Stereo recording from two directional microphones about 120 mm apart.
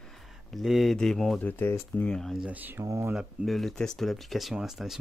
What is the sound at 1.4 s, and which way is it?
Speech, 15° left (ahead or behind).